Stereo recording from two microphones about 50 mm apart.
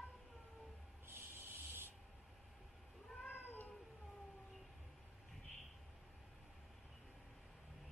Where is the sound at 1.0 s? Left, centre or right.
Right.